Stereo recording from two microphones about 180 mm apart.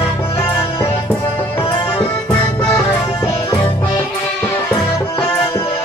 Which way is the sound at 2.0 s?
5° left (ahead or behind).